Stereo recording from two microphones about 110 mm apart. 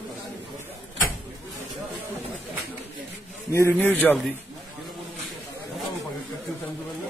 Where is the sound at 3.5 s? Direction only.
25° left (ahead or behind).